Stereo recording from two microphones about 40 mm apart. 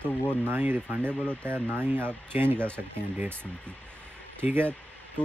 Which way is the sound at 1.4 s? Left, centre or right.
Right.